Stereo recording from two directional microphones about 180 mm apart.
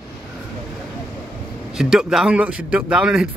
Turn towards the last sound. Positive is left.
turn(degrees=-5)  # may be behind; listen again after turning